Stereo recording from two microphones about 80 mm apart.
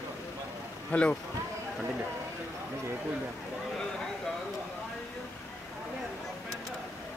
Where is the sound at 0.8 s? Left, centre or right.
Centre.